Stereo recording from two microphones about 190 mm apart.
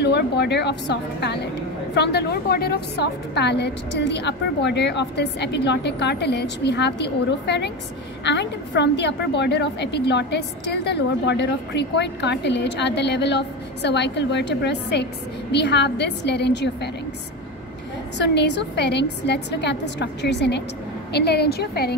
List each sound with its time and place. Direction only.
0.0 s a woman's voice: 60° left (ahead or behind)
18.2 s a woman's voice: 65° left (ahead or behind)